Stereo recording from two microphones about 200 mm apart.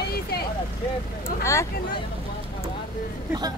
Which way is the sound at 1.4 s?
15° left (ahead or behind).